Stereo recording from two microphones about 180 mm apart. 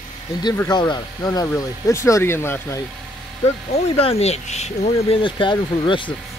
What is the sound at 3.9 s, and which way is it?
Speech, 35° left (ahead or behind).